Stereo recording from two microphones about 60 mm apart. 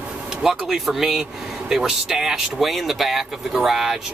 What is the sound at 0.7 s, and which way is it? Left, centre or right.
Speech, centre.